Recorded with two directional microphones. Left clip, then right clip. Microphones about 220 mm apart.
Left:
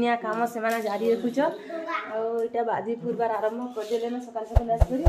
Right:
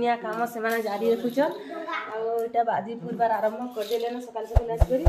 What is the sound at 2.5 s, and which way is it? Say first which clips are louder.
Speech: right 2 dB; 15° left (ahead or behind).